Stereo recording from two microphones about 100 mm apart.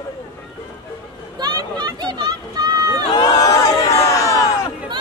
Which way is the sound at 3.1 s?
40° left (ahead or behind).